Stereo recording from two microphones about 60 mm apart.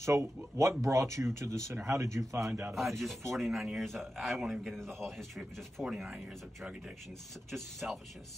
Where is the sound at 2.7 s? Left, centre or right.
Centre.